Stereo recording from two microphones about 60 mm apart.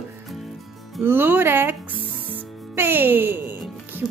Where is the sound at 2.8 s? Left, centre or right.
Right.